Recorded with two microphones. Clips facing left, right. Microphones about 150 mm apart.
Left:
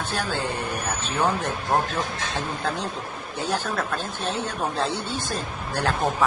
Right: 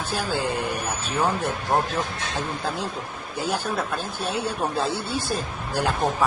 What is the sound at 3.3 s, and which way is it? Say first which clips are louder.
Speech: right 1 dB; 10° right (ahead or behind).